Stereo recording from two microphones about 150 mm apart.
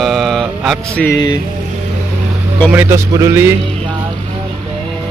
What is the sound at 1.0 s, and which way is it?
Vehicle, 20° left (ahead or behind).